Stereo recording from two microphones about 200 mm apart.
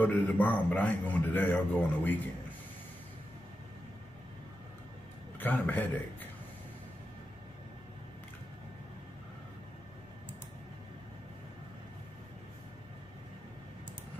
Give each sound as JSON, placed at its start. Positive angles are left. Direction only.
{"t": 0.0, "sound": "a man's voice", "side_deg": 10}
{"t": 5.4, "sound": "a man's voice", "side_deg": 10}